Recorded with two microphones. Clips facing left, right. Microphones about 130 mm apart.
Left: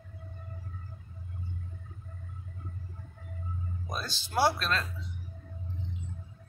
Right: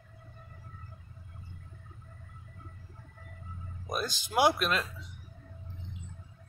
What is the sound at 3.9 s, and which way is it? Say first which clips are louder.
Speech: right 2 dB; 15° right (ahead or behind).